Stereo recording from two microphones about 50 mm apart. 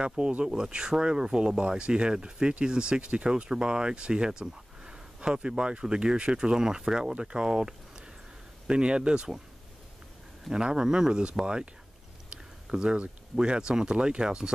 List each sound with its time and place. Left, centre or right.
0.0 s speech: centre
10.5 s speech: centre